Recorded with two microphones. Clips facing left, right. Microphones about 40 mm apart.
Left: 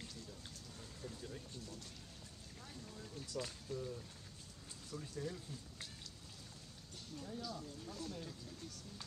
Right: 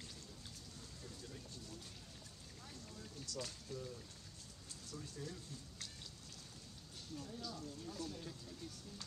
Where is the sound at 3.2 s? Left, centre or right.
Centre.